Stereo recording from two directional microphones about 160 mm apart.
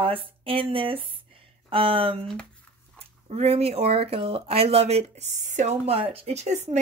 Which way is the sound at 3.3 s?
40° right (ahead or behind).